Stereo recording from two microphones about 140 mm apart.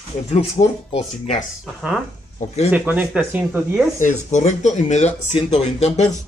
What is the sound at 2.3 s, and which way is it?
Speech, 50° left (ahead or behind).